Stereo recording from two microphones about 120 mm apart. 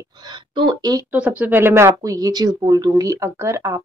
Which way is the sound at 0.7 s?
35° right (ahead or behind).